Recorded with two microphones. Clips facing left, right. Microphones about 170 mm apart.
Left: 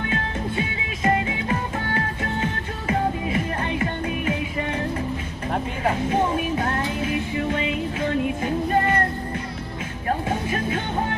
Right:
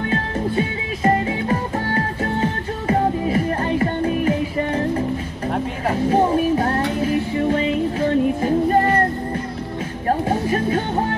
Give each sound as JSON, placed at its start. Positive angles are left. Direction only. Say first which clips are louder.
{"t": 0.1, "sound": "music", "louder": "right 5 dB", "side_deg": -40}
{"t": 6.0, "sound": "speech", "louder": "right 10 dB", "side_deg": -35}
{"t": 7.0, "sound": "music", "louder": "right 5 dB", "side_deg": -35}
{"t": 10.0, "sound": "music", "louder": "right 5 dB", "side_deg": -35}